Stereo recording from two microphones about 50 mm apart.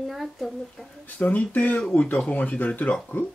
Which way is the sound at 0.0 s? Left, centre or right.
Centre.